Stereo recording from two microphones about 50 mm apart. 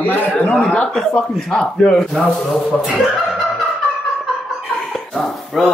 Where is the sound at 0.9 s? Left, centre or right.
Centre.